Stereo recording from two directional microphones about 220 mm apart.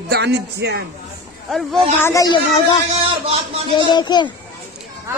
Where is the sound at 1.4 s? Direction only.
Centre (ahead or behind).